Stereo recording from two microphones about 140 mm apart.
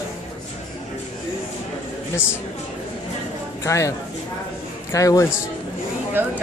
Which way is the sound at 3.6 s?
20° left (ahead or behind).